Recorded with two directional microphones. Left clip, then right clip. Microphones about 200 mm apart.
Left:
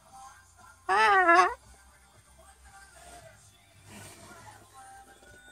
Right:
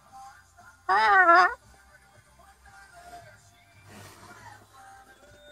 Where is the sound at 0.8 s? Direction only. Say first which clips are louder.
Right 2 dB; 40° left (ahead or behind).